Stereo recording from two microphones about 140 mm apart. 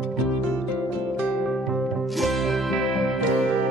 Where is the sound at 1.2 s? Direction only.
Centre (ahead or behind).